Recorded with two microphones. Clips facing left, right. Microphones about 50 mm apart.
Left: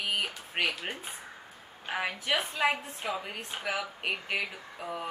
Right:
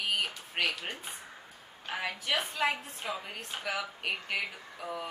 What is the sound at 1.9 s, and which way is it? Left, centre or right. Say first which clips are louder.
Speech: left 2 dB; centre.